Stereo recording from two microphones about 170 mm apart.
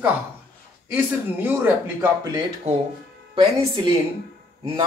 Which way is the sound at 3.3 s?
30° right (ahead or behind).